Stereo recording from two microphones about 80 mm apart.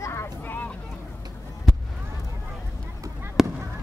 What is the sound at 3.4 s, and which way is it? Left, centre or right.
Honk, centre.